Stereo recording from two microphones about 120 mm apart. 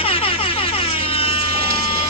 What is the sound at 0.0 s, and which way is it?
Air horn, 50° left (ahead or behind).